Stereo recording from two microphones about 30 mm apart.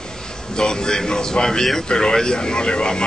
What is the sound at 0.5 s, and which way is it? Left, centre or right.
Speech, left.